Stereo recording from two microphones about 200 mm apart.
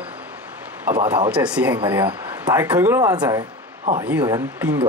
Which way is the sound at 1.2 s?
5° right (ahead or behind).